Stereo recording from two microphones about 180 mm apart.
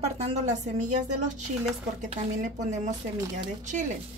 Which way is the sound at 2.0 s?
40° right (ahead or behind).